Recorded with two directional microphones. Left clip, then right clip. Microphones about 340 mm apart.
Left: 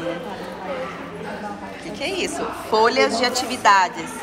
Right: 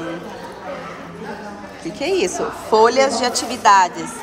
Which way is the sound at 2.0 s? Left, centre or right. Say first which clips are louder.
Right 5 dB; centre.